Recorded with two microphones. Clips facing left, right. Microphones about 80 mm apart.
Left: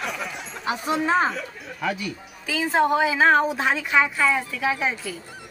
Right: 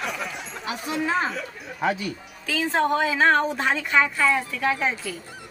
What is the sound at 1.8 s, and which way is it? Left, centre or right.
Speech, right.